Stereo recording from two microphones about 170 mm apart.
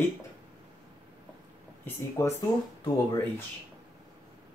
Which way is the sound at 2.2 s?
15° left (ahead or behind).